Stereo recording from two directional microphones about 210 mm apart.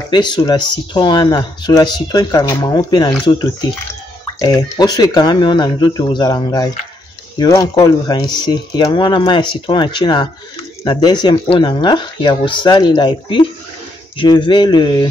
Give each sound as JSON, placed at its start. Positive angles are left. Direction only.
{"t": 0.1, "sound": "speech", "side_deg": 20}